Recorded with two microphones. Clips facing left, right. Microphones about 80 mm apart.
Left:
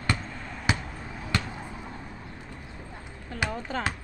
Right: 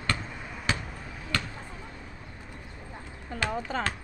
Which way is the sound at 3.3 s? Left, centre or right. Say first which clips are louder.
Left 1 dB; centre.